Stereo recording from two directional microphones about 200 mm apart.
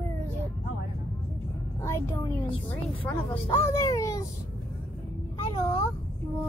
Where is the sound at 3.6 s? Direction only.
15° left (ahead or behind).